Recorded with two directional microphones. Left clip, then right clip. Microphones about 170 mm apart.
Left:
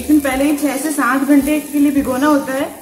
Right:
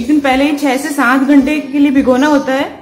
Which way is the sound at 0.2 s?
50° right (ahead or behind).